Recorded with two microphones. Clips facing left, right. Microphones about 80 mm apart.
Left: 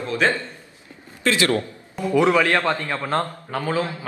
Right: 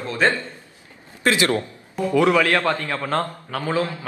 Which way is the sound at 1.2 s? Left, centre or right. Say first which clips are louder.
Right 1 dB; right.